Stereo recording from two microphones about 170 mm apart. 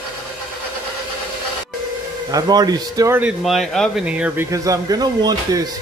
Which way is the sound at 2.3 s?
25° right (ahead or behind).